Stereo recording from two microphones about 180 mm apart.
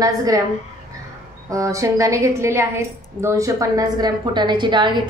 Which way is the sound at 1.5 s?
15° right (ahead or behind).